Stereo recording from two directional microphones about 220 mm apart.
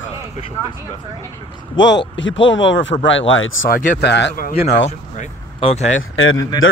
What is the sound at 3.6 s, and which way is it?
Speech, 40° left (ahead or behind).